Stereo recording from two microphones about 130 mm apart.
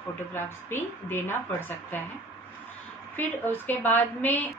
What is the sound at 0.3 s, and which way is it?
A woman's voice, 15° left (ahead or behind).